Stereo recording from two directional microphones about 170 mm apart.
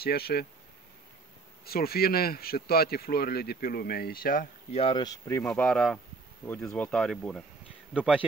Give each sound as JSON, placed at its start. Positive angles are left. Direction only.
{"t": 0.0, "sound": "speech", "side_deg": 65}
{"t": 1.7, "sound": "speech", "side_deg": 65}
{"t": 4.7, "sound": "speech", "side_deg": 30}
{"t": 5.4, "sound": "speech", "side_deg": 5}